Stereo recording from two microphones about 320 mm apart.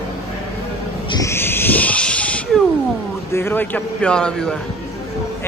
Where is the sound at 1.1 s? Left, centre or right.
Centre.